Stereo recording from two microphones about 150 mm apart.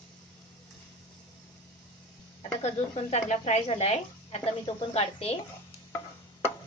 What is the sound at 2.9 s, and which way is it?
A woman's voice, 45° left (ahead or behind).